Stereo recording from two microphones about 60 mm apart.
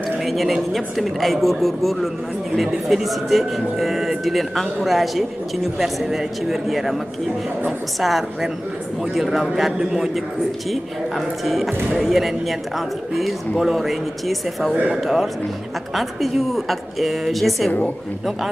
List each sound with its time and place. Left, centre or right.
0.2 s a man's voice: centre
8.0 s a man's voice: centre
17.6 s a woman's voice: left